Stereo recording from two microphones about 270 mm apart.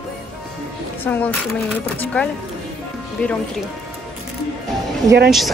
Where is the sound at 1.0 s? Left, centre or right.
Centre.